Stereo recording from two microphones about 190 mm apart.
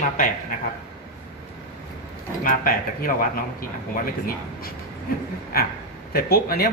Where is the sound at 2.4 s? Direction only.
50° left (ahead or behind).